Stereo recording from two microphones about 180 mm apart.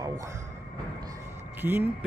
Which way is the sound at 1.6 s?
10° right (ahead or behind).